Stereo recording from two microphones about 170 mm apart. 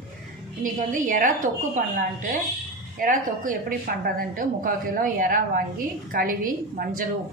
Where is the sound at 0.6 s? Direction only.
50° right (ahead or behind).